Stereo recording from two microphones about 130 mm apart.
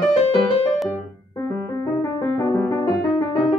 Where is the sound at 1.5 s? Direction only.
25° left (ahead or behind).